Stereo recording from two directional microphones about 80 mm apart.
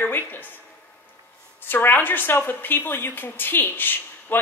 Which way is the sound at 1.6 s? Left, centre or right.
Left.